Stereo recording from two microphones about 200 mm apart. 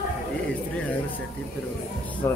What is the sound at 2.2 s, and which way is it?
Speech, 15° left (ahead or behind).